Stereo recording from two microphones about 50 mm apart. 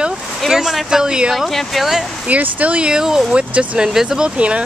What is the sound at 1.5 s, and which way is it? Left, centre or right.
Speech, centre.